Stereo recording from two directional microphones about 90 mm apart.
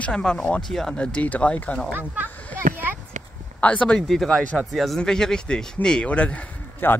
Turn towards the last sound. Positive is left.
turn(degrees=20)  # may be behind; listen again after turning